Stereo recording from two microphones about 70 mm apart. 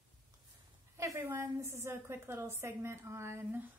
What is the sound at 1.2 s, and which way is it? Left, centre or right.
A woman's voice, right.